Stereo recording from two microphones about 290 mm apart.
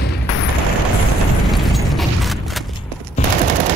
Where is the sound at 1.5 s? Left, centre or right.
Centre.